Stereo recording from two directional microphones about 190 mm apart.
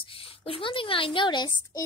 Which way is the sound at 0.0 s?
30° left (ahead or behind).